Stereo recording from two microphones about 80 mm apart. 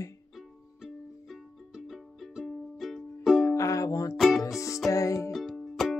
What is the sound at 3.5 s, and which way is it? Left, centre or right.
Music, left.